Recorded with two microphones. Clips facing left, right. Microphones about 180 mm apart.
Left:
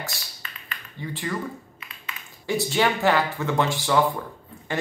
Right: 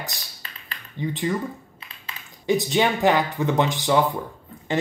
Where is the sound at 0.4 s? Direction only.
30° right (ahead or behind).